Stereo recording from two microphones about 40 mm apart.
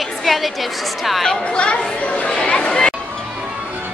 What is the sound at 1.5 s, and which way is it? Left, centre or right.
Speech, left.